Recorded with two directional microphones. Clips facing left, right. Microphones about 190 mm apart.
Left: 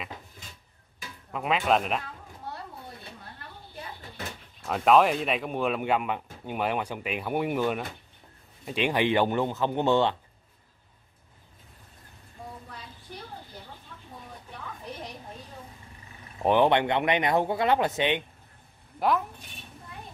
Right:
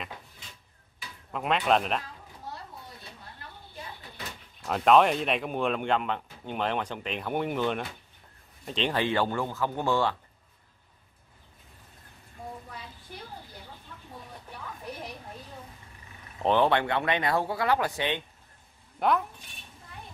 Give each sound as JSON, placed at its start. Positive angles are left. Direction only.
{"t": 1.3, "sound": "speech", "side_deg": 0}
{"t": 4.6, "sound": "speech", "side_deg": 0}
{"t": 16.4, "sound": "speech", "side_deg": 15}
{"t": 18.9, "sound": "speech", "side_deg": 0}